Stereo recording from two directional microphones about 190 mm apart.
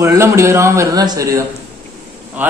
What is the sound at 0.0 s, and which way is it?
A man's voice, 15° right (ahead or behind).